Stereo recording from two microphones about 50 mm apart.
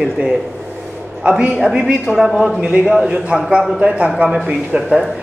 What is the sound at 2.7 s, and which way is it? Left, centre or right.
Speech, right.